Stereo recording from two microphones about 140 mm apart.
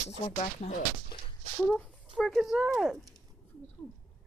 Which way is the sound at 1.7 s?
5° left (ahead or behind).